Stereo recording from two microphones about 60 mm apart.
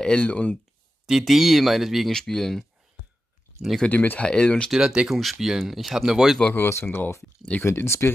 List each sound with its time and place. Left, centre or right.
0.0 s speech: centre
1.0 s speech: centre
3.8 s speech: left
4.3 s speech: centre
4.6 s speech: centre
6.4 s speech: left
7.6 s speech: left